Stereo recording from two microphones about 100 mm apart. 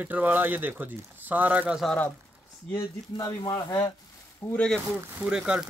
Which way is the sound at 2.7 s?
30° left (ahead or behind).